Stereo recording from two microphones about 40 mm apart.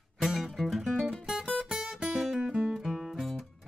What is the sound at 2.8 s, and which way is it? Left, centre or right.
Music, centre.